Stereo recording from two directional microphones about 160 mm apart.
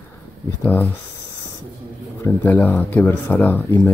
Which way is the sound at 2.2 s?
10° left (ahead or behind).